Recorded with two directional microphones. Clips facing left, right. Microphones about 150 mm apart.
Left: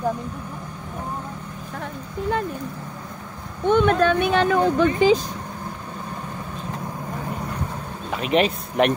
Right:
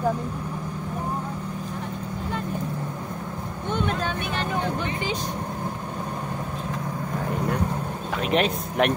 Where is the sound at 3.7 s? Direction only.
65° left (ahead or behind); by 4.8 s 80° left.